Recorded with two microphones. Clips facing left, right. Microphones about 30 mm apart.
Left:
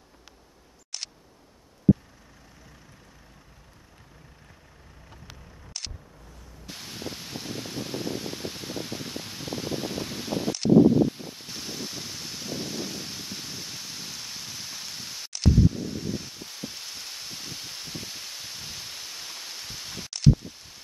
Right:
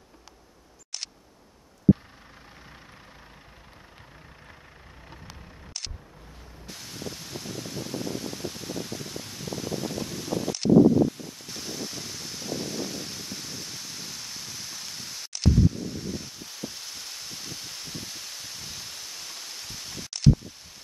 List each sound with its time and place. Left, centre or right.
6.7 s rustling leaves: centre
11.4 s rustling leaves: centre